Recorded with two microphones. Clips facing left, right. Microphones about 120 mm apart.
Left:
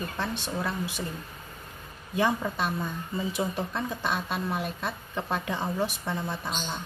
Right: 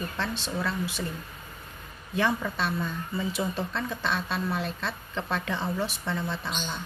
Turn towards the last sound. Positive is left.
turn(degrees=15)  # may be behind; listen again after turning